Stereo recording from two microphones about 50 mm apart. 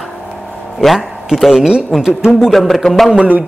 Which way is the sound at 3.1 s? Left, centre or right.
Right.